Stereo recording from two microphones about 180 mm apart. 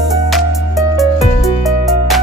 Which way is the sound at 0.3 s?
Centre (ahead or behind).